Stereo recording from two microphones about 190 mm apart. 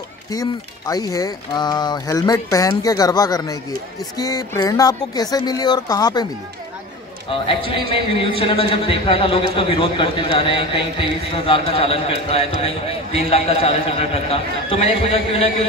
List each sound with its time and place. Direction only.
0.3 s a man's voice: 20° left (ahead or behind)
7.2 s a man's voice: 25° left (ahead or behind)